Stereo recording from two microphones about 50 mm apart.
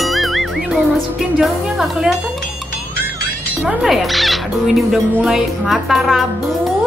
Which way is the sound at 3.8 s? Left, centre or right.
Centre.